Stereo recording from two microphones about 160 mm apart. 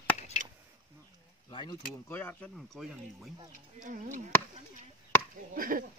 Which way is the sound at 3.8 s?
50° right (ahead or behind).